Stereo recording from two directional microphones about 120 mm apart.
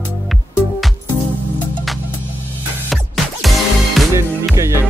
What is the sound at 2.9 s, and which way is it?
Music, centre (ahead or behind).